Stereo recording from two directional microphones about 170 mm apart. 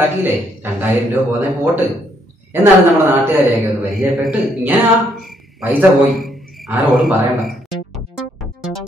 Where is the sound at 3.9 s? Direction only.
Centre (ahead or behind).